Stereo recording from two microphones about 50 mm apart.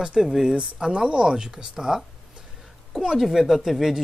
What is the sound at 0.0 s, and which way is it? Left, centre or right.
A woman's voice, centre.